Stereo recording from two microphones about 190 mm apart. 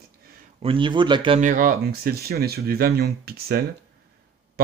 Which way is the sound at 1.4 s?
45° right (ahead or behind).